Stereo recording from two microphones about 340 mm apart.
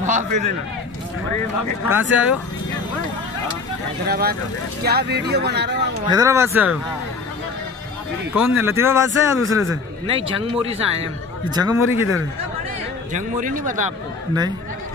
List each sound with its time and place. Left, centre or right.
0.0 s a sound: right
1.9 s speech: centre
4.0 s speech: right
6.0 s speech: centre
8.5 s speech: centre
13.1 s speech: right